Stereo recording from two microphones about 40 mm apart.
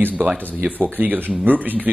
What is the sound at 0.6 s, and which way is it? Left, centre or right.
A man's voice, right.